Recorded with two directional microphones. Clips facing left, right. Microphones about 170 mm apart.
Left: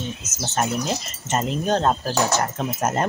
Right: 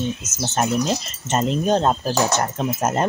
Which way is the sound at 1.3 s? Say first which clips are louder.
Right 3 dB; 25° right (ahead or behind).